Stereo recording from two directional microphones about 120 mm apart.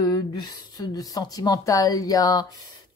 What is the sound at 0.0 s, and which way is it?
Speech, 35° left (ahead or behind).